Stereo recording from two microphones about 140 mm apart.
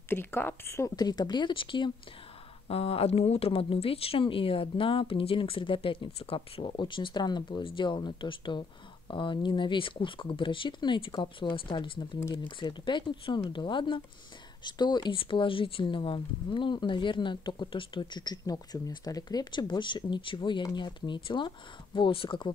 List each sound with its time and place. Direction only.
0.1 s speech: 15° left (ahead or behind); by 22.5 s 40° left (ahead or behind)